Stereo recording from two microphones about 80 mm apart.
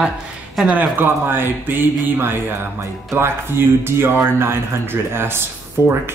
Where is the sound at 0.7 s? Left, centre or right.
Right.